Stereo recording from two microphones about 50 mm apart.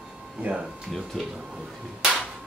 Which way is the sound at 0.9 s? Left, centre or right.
Centre.